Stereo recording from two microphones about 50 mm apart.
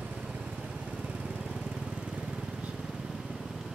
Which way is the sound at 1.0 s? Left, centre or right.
Centre.